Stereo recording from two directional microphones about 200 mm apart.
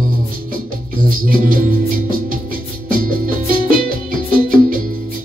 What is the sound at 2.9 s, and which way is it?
Music, 45° right (ahead or behind).